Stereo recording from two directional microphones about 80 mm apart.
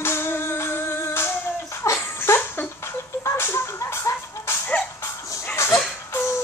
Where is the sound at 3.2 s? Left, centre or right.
Left.